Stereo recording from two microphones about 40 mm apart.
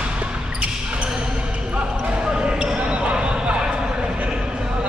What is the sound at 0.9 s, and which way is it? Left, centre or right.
Basketball bounce, right.